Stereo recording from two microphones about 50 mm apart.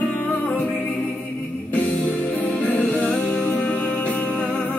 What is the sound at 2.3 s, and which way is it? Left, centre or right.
Music, left.